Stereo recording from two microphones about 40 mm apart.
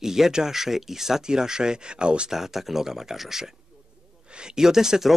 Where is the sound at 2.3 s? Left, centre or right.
Centre.